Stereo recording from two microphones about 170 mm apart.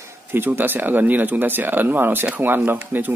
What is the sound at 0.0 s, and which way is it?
Speech, 10° right (ahead or behind).